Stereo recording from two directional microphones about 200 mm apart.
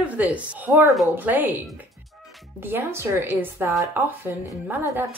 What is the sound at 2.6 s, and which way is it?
Speech, 10° right (ahead or behind).